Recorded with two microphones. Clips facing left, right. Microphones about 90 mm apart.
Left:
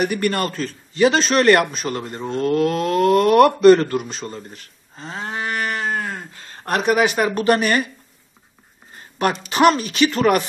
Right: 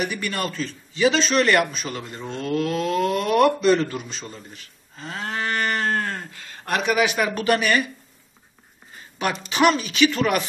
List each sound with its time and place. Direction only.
0.0 s speech: 50° left (ahead or behind)
4.9 s a sound: 25° left (ahead or behind); by 6.2 s 5° left (ahead or behind)
6.3 s speech: 35° left (ahead or behind)
9.5 s speech: 40° left (ahead or behind)